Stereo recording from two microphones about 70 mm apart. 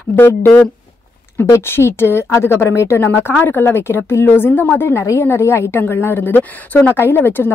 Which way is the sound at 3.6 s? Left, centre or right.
Left.